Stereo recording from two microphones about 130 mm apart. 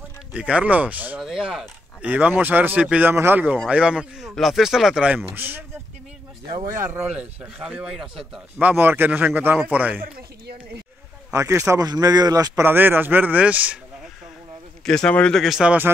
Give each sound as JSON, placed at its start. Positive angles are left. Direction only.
{"t": 0.3, "sound": "speech", "side_deg": -10}
{"t": 6.6, "sound": "speech", "side_deg": -20}
{"t": 7.1, "sound": "speech", "side_deg": -5}
{"t": 11.3, "sound": "speech", "side_deg": -25}
{"t": 12.6, "sound": "speech", "side_deg": -15}
{"t": 14.9, "sound": "speech", "side_deg": 5}